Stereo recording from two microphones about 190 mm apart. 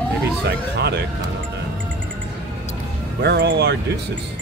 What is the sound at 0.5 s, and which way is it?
Speech, 60° right (ahead or behind).